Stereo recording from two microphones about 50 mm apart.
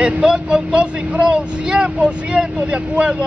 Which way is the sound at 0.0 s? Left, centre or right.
Centre.